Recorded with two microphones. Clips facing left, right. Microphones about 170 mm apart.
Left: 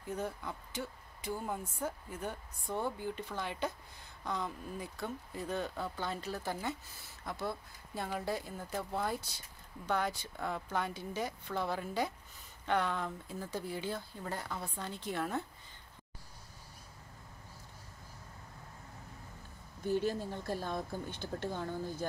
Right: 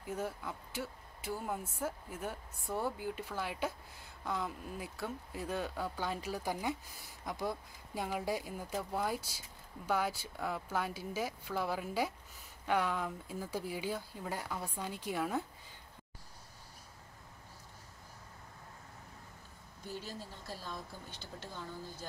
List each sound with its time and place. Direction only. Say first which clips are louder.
0.0 s speech: even; 5° right (ahead or behind)
19.9 s speech: left 11 dB; 55° left (ahead or behind)